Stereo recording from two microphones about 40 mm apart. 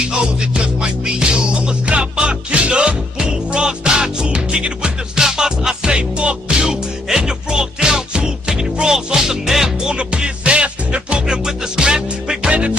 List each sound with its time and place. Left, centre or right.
0.7 s music: right
9.9 s music: right